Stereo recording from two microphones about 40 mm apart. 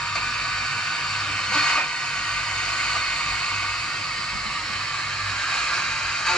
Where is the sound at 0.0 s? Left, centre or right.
Centre.